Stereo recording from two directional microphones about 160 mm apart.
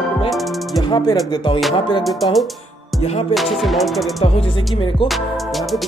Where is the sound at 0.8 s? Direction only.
25° left (ahead or behind).